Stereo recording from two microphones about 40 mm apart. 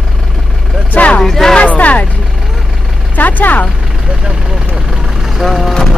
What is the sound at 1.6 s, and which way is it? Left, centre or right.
Speech, left.